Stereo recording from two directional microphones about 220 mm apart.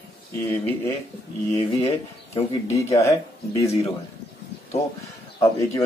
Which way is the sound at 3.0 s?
10° left (ahead or behind).